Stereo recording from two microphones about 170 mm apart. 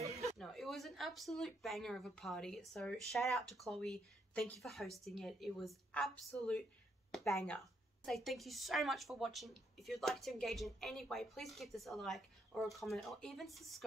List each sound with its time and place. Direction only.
0.2 s speech: centre (ahead or behind)